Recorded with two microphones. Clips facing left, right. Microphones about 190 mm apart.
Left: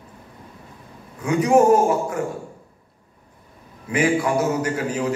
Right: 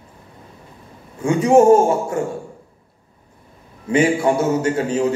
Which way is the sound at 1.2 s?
25° right (ahead or behind).